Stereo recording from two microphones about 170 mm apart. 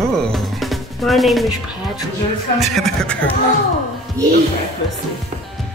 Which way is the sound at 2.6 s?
Centre (ahead or behind).